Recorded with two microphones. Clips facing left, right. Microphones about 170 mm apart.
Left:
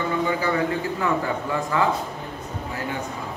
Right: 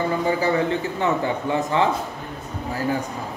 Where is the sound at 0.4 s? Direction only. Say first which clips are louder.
Right 2 dB; 30° right (ahead or behind).